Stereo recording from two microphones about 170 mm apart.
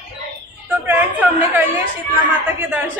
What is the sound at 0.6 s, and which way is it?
A woman's voice, 10° right (ahead or behind).